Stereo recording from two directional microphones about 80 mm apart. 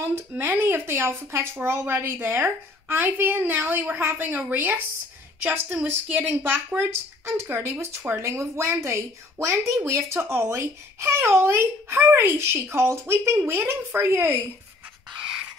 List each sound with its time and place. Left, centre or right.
0.0 s a woman's voice: right